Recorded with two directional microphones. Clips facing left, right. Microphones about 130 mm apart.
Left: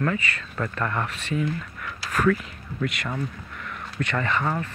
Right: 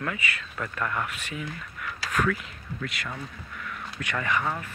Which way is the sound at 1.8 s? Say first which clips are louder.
Right 3 dB; centre (ahead or behind).